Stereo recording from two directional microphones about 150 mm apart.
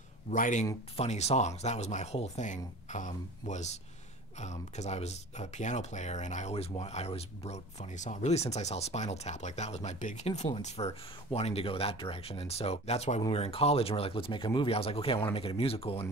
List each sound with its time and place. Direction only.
0.3 s speech: 55° left (ahead or behind)
0.9 s speech: 45° left (ahead or behind)